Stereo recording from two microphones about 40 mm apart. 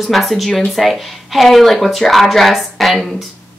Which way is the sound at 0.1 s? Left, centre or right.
Centre.